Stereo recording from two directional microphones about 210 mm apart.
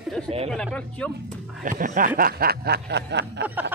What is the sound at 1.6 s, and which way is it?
Snicker, 40° right (ahead or behind).